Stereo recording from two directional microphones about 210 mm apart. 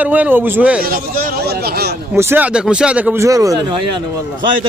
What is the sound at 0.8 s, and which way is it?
Speech, 45° right (ahead or behind).